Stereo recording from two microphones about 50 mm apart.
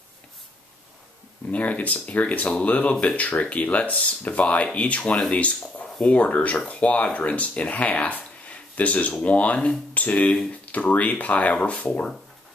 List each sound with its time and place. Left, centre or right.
1.5 s speech: left